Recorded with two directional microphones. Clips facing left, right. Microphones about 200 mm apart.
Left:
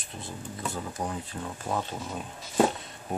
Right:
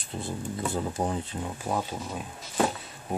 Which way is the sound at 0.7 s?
30° right (ahead or behind).